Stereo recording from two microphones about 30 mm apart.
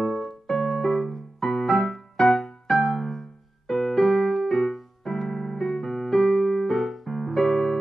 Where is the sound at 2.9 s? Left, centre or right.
Centre.